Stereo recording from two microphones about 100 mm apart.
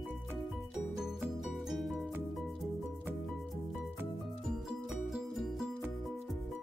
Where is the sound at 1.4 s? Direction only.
Centre (ahead or behind).